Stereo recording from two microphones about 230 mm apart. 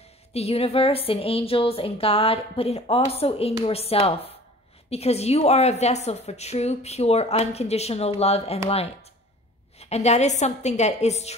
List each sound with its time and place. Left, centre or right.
0.3 s a woman's voice: left